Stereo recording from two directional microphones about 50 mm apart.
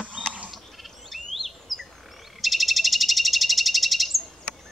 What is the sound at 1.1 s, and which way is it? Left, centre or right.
Chirp, centre.